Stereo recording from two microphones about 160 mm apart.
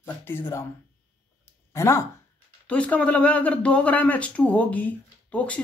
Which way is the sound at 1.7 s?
15° left (ahead or behind).